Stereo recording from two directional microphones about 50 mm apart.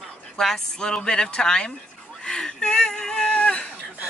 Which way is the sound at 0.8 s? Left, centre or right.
Centre.